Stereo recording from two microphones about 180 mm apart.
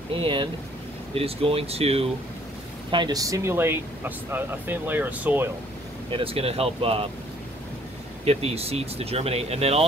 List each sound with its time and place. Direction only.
0.1 s speech: 30° right (ahead or behind)
2.9 s speech: 25° right (ahead or behind)
6.0 s speech: 30° right (ahead or behind)
8.3 s speech: 35° right (ahead or behind)